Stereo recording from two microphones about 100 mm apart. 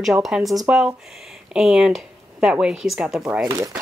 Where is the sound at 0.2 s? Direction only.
Centre (ahead or behind).